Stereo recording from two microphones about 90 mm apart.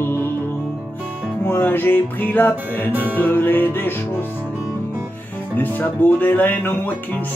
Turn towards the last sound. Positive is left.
turn(degrees=25)  # may be behind; listen again after turning